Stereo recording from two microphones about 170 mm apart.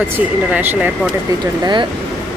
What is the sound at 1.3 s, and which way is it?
Speech, 20° right (ahead or behind).